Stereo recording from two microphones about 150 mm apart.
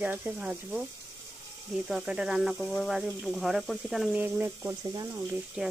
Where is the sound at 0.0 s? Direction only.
10° right (ahead or behind).